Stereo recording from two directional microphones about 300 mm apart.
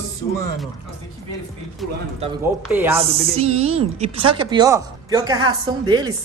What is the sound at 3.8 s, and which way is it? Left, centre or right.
A woman's voice, centre.